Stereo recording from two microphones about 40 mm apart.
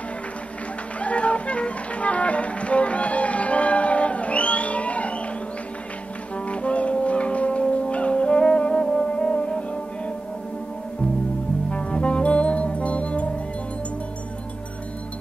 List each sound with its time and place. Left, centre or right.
0.9 s music: left
6.3 s brass instrument: left
8.8 s music: left
11.7 s music: left